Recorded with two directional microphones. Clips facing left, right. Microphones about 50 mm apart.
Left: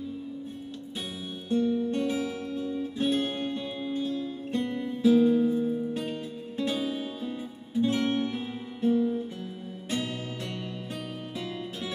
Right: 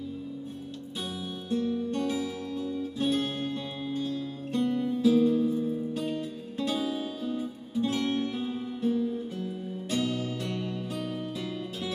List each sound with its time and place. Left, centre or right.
0.9 s music: left